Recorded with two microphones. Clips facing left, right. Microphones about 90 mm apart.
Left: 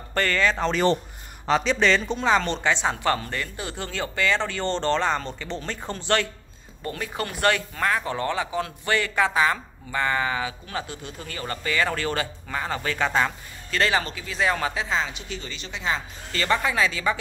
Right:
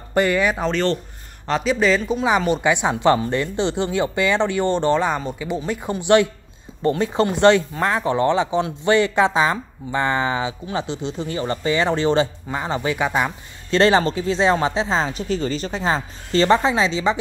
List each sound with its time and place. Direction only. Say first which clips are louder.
0.1 s speech: right 5 dB; 15° right (ahead or behind)
1.4 s speech: right 2 dB; centre (ahead or behind)
6.8 s speech: right 11 dB; 25° right (ahead or behind)
13.7 s speech: right 8 dB; 30° right (ahead or behind)